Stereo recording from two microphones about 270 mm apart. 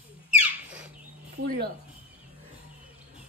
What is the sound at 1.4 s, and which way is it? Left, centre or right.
Speech, right.